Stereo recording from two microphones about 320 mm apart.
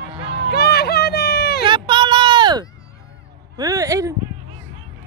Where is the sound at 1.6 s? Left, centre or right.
Centre.